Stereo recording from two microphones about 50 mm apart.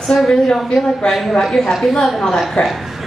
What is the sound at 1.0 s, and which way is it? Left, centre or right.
A woman's voice, centre.